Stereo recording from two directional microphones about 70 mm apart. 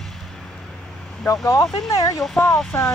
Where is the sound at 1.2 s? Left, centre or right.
Left.